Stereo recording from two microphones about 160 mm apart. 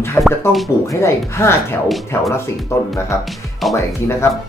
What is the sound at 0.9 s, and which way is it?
Speech, 15° left (ahead or behind).